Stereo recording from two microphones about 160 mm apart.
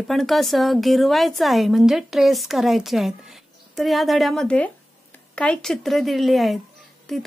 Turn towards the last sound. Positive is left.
turn(degrees=0)  # may be behind; listen again after turning